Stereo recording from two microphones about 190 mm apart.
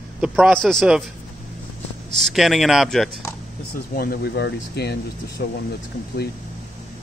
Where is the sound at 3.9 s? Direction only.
50° left (ahead or behind).